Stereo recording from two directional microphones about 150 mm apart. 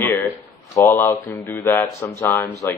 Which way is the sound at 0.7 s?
15° left (ahead or behind).